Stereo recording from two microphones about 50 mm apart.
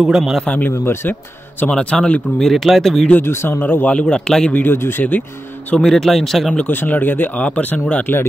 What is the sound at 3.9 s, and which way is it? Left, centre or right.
Speech, centre.